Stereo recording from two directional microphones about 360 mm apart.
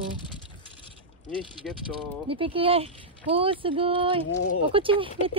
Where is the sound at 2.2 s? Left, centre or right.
Centre.